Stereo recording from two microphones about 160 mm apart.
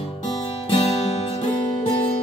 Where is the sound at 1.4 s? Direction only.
35° left (ahead or behind).